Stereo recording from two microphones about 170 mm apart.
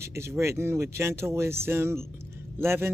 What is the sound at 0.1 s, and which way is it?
Speech, 15° right (ahead or behind).